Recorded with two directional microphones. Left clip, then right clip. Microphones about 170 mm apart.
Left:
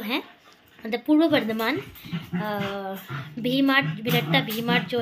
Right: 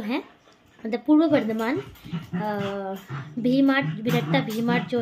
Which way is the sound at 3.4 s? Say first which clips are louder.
Even; 20° right (ahead or behind).